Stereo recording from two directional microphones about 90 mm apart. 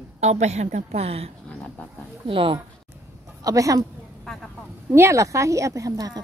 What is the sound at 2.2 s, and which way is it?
Speech, 75° right (ahead or behind).